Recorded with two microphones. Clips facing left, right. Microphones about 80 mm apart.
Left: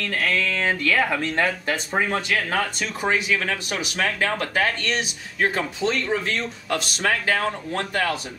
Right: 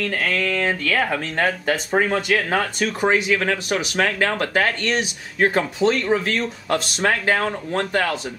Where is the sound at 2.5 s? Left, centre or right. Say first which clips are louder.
Right 4 dB; right.